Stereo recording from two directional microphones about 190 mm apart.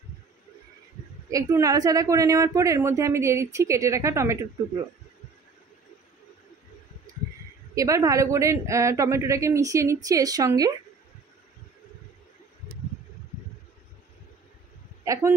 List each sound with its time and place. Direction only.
1.3 s speech: 15° right (ahead or behind)
7.7 s a woman's voice: 15° right (ahead or behind)
15.1 s speech: 15° right (ahead or behind)